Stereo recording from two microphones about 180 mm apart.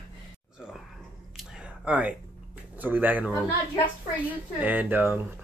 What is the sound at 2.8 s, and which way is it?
Speech, 10° right (ahead or behind).